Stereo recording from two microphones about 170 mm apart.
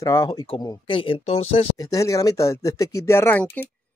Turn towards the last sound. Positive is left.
turn(degrees=10)  # may be behind; listen again after turning